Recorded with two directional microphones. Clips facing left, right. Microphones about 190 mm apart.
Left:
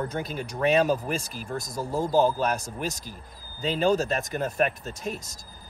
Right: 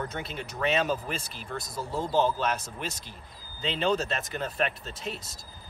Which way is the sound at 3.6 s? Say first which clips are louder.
Left 4 dB; 40° left (ahead or behind).